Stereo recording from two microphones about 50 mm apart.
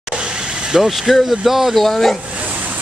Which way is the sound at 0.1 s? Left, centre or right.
Right.